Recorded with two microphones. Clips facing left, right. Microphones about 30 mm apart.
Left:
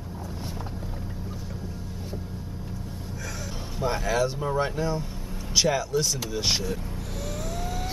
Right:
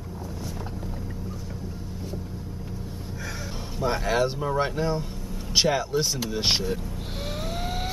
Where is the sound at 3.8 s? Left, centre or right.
Centre.